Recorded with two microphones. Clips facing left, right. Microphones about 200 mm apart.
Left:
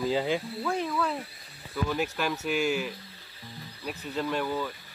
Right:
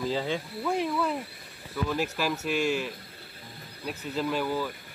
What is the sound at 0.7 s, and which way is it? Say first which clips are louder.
Speech: right 3 dB; 10° right (ahead or behind).